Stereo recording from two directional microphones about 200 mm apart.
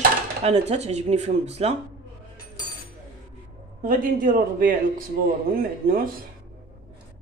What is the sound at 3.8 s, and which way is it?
Speech, 45° right (ahead or behind).